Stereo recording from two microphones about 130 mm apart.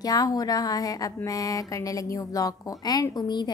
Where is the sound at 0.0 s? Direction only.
30° left (ahead or behind).